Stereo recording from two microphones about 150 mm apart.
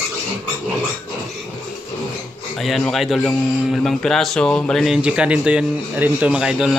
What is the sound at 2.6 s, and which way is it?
A man's voice, centre (ahead or behind).